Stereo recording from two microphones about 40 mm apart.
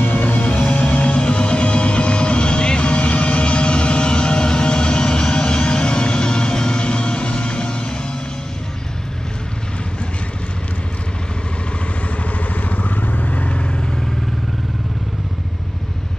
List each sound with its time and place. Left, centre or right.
0.0 s music: left
12.6 s vehicle: left